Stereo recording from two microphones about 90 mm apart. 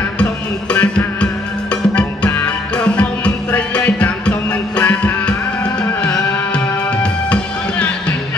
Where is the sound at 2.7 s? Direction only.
15° left (ahead or behind).